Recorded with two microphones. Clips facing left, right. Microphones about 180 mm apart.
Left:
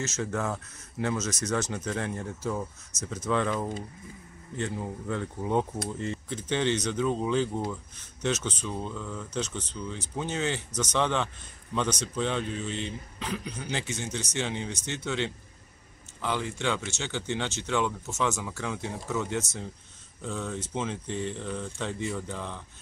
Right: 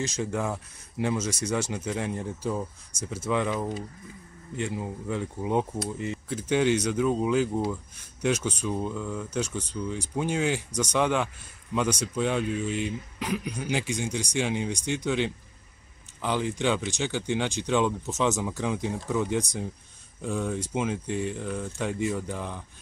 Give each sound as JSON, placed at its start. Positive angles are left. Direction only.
{"t": 0.0, "sound": "speech", "side_deg": -15}